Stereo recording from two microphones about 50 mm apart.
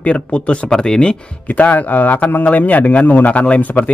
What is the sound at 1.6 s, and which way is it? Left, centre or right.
Speech, left.